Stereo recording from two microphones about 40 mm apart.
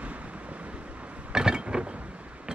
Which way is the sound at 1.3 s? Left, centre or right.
Centre.